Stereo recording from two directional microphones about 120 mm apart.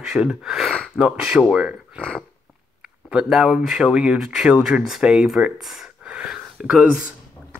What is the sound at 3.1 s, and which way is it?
Speech, 5° right (ahead or behind).